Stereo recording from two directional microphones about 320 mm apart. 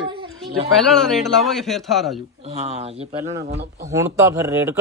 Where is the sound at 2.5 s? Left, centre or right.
Centre.